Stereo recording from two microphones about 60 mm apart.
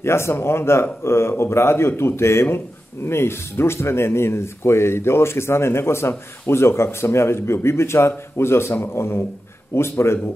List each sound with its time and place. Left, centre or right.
0.0 s speech: left